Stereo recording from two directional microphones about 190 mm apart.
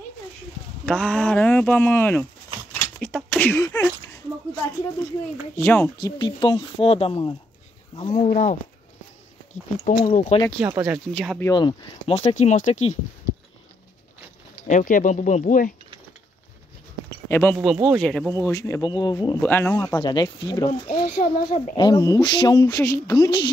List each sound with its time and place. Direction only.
0.8 s speech: 5° left (ahead or behind)
5.6 s speech: 10° left (ahead or behind)
5.9 s speech: 25° left (ahead or behind)
9.8 s speech: 40° left (ahead or behind)
10.6 s speech: 5° right (ahead or behind)
11.4 s speech: 25° left (ahead or behind)
12.2 s speech: 35° left (ahead or behind)
14.7 s speech: 40° left (ahead or behind)
17.3 s speech: 10° left (ahead or behind)
17.6 s speech: 5° right (ahead or behind)
18.4 s speech: 15° left (ahead or behind)
19.4 s speech: 10° left (ahead or behind)
21.0 s speech: 50° left (ahead or behind)
21.7 s speech: 20° left (ahead or behind)